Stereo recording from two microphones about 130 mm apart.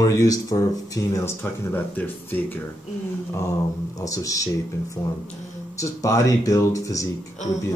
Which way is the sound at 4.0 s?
25° left (ahead or behind).